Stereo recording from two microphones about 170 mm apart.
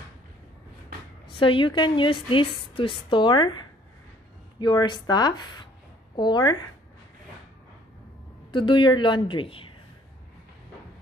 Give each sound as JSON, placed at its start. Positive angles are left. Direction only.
{"t": 1.2, "sound": "a woman's voice", "side_deg": 30}
{"t": 4.6, "sound": "a woman's voice", "side_deg": 25}
{"t": 8.5, "sound": "a woman's voice", "side_deg": 30}